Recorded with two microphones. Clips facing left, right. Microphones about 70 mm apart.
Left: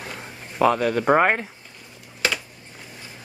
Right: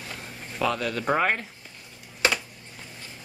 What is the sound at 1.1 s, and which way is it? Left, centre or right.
Speech, left.